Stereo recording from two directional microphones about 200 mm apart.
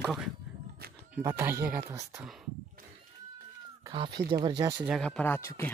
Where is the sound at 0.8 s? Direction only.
50° right (ahead or behind).